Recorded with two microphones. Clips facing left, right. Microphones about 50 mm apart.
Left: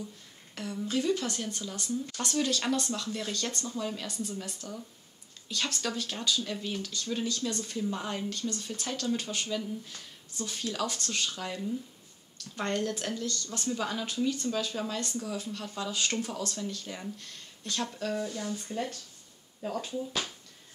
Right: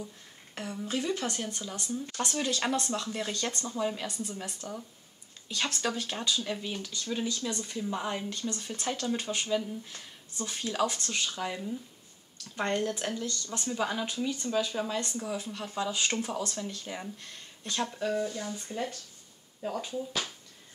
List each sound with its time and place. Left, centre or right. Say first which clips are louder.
0.8 s speech: left 2 dB; centre
17.9 s speech: right 2 dB; centre